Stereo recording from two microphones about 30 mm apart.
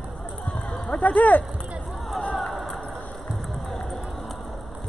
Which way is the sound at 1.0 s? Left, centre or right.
Left.